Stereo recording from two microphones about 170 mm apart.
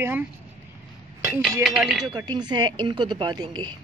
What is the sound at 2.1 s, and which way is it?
A woman's voice, 25° right (ahead or behind).